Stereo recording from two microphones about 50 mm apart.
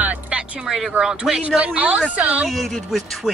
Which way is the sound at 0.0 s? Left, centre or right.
Right.